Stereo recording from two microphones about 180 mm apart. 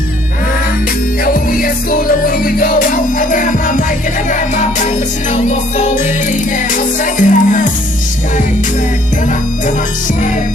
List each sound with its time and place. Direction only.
1.2 s music: 50° left (ahead or behind)
7.2 s music: 45° left (ahead or behind)